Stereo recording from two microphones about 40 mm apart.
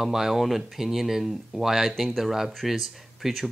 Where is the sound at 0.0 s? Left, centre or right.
Centre.